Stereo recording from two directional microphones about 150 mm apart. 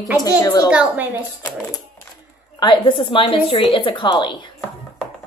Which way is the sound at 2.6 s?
35° left (ahead or behind).